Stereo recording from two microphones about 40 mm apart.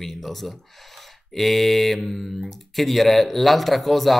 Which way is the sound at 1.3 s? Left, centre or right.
Centre.